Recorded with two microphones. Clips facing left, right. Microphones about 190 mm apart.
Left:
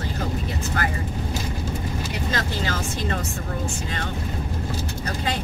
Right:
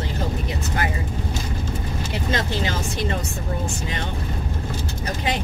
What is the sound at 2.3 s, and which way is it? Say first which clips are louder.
Speech: right 3 dB; 20° right (ahead or behind).